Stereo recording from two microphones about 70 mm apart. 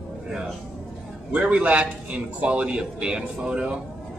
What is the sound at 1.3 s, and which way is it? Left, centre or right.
A man's voice, centre.